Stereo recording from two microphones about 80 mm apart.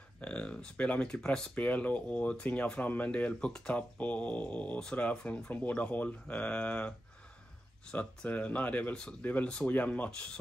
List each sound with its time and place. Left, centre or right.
0.2 s speech: centre
7.9 s speech: centre